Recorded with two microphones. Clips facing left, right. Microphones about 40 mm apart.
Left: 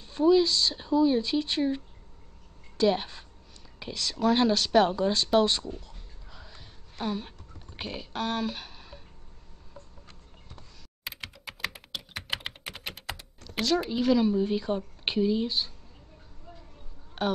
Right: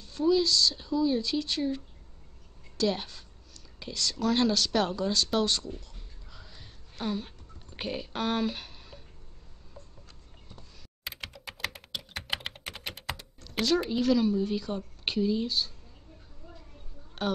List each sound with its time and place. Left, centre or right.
0.0 s speech: left
2.8 s speech: left; by 9.0 s centre
11.1 s computer keyboard: centre
14.0 s speech: centre
17.2 s a woman's voice: centre